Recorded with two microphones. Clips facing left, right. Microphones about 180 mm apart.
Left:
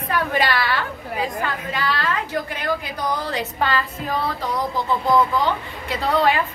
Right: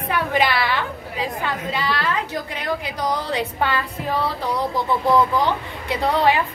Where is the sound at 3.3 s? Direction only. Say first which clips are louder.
Right 1 dB; 15° right (ahead or behind).